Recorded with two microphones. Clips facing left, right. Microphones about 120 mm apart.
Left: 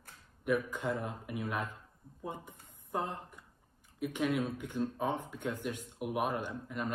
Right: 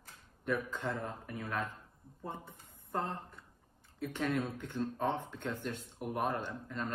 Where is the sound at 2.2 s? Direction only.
15° left (ahead or behind).